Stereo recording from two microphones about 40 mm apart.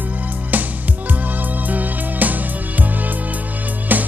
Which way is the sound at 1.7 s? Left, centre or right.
Right.